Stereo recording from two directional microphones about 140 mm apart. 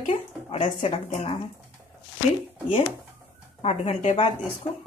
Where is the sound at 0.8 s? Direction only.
45° left (ahead or behind).